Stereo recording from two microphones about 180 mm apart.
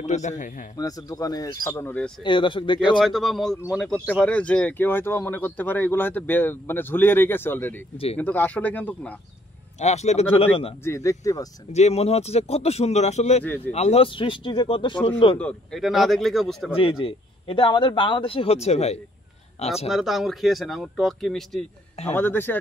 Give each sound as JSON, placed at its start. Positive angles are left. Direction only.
{"t": 0.0, "sound": "a man's voice", "side_deg": 40}
{"t": 0.7, "sound": "speech", "side_deg": 20}
{"t": 2.2, "sound": "speech", "side_deg": 25}
{"t": 3.0, "sound": "speech", "side_deg": 0}
{"t": 9.8, "sound": "a man's voice", "side_deg": 40}
{"t": 10.8, "sound": "speech", "side_deg": 15}
{"t": 11.7, "sound": "a man's voice", "side_deg": 35}
{"t": 15.3, "sound": "speech", "side_deg": 5}
{"t": 16.7, "sound": "a man's voice", "side_deg": 30}
{"t": 19.9, "sound": "speech", "side_deg": 0}